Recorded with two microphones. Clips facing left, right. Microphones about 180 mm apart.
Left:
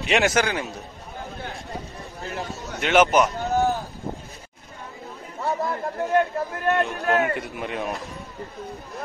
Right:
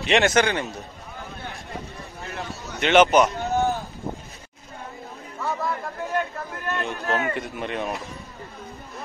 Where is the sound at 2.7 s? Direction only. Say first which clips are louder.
Right 2 dB; 5° left (ahead or behind).